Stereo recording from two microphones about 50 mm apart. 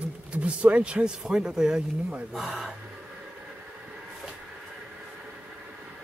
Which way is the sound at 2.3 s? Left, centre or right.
Centre.